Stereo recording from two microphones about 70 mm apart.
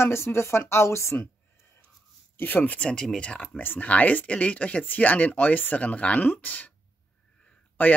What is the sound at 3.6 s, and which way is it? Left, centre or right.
Speech, left.